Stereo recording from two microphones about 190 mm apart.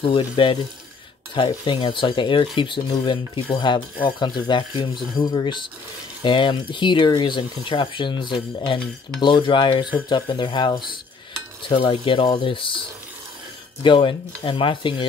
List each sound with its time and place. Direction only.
0.0 s speech: 25° left (ahead or behind)
13.8 s speech: 25° left (ahead or behind)